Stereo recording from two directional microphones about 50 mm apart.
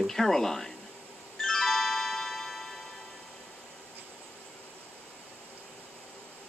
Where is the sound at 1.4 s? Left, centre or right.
Centre.